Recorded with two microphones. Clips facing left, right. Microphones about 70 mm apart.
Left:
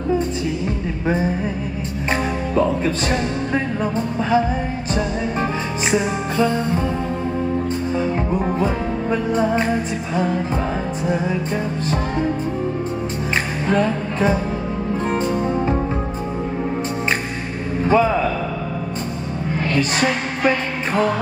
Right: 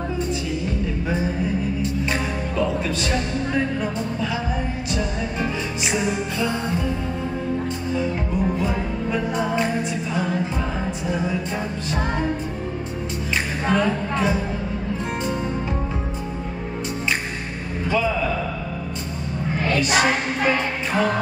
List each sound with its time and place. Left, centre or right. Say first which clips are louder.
2.1 s music: left 4 dB; left
5.9 s music: left 4 dB; left
7.9 s music: left 2 dB; left
17.8 s a sound: left 6 dB; left